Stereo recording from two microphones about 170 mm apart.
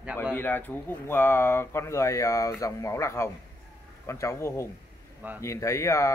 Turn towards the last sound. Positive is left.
turn(degrees=15)  # may be behind; listen again after turning